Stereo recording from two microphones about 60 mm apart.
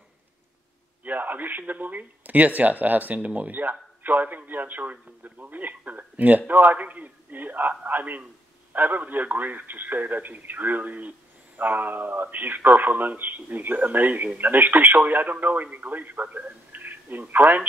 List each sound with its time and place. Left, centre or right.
1.0 s a man's voice: right
16.7 s telephone: right